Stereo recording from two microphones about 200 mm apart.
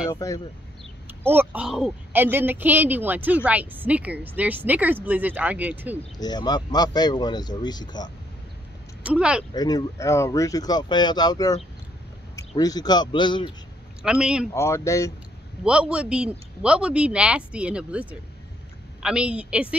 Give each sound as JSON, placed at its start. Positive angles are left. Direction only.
{"t": 0.1, "sound": "speech", "side_deg": 15}
{"t": 1.2, "sound": "speech", "side_deg": -10}
{"t": 6.1, "sound": "speech", "side_deg": 20}
{"t": 9.0, "sound": "speech", "side_deg": -5}
{"t": 9.5, "sound": "speech", "side_deg": 20}
{"t": 12.5, "sound": "speech", "side_deg": 20}
{"t": 14.0, "sound": "speech", "side_deg": -5}
{"t": 14.5, "sound": "speech", "side_deg": 15}
{"t": 15.6, "sound": "speech", "side_deg": -5}
{"t": 19.0, "sound": "speech", "side_deg": -5}